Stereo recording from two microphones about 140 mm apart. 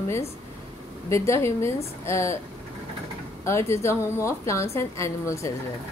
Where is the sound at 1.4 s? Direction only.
20° left (ahead or behind).